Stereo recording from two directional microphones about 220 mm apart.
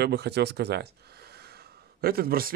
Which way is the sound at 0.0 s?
50° right (ahead or behind).